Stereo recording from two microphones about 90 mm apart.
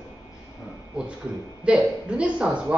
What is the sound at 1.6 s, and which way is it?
A man's voice, 10° right (ahead or behind).